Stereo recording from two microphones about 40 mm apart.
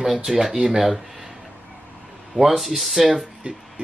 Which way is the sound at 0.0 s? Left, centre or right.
Centre.